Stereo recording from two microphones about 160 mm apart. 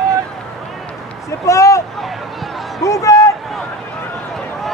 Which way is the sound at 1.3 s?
20° left (ahead or behind).